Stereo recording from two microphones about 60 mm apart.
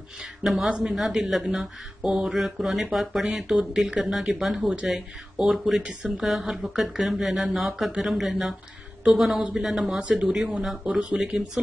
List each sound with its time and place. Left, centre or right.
0.4 s a man's voice: centre
0.7 s speech: centre
0.9 s speech: centre